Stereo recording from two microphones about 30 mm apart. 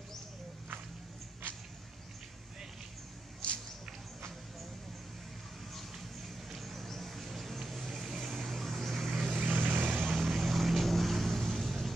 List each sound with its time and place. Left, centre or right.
5.7 s vehicle: centre
9.1 s vehicle: right
9.4 s vehicle: right
9.8 s vehicle: right
10.1 s vehicle: centre